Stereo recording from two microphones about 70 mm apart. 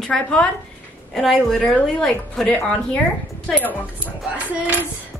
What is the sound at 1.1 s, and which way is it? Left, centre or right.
Speech, centre.